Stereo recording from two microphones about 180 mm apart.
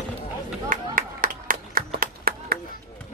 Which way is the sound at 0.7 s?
50° right (ahead or behind).